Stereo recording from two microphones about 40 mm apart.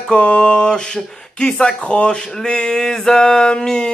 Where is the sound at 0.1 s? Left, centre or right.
Left.